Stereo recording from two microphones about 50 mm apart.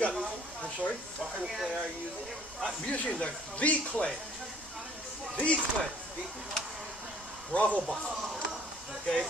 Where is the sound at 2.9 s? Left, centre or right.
Left.